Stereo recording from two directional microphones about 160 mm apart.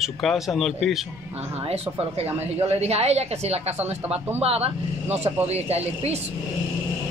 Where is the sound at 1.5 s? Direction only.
40° right (ahead or behind).